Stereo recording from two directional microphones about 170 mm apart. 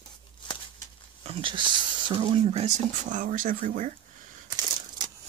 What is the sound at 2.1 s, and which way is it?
Speech, 30° right (ahead or behind).